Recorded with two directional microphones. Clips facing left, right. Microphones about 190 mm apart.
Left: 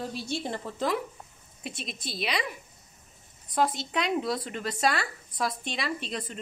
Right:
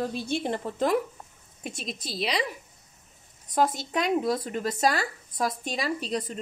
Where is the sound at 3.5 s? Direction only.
45° right (ahead or behind).